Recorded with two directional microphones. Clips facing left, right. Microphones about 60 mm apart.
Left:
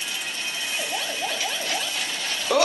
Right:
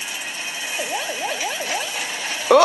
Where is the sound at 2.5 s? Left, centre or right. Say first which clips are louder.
Right 8 dB; right.